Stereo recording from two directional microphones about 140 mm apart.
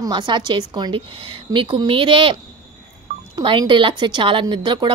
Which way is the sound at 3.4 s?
35° right (ahead or behind).